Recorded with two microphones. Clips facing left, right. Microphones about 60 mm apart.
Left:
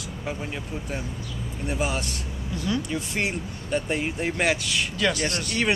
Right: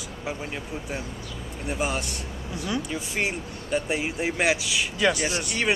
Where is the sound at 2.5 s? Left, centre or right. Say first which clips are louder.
Left 2 dB; centre.